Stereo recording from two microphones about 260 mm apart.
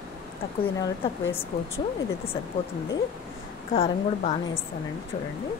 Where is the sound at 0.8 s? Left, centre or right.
Centre.